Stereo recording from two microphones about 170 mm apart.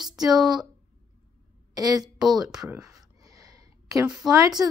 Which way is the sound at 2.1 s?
Centre (ahead or behind).